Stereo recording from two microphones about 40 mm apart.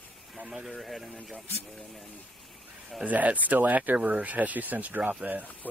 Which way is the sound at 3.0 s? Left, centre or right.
Right.